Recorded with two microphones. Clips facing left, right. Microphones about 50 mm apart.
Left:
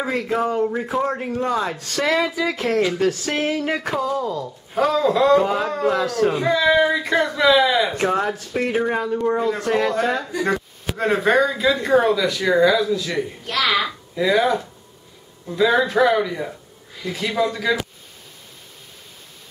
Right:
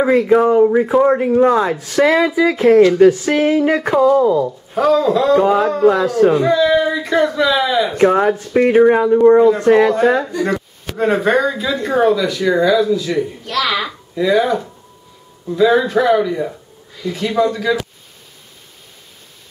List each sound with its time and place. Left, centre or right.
0.0 s speech: centre
4.2 s speech: right
4.7 s speech: centre
8.0 s speech: centre
9.7 s speech: centre
10.3 s speech: centre